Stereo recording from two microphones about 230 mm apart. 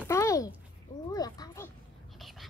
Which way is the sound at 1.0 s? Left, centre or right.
Centre.